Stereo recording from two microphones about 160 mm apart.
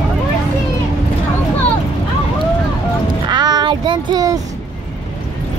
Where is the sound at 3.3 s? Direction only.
25° right (ahead or behind).